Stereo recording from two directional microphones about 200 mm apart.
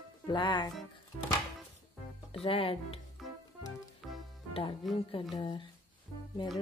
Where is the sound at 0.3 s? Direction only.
20° left (ahead or behind).